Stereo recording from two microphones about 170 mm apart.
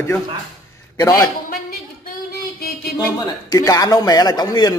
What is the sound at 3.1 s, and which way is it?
A man's voice, 20° left (ahead or behind).